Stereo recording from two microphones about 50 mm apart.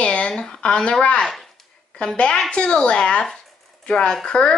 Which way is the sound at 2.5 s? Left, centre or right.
Centre.